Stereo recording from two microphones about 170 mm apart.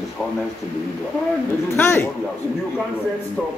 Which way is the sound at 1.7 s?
15° left (ahead or behind).